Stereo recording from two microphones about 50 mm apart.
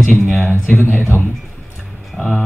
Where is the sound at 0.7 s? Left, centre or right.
Left.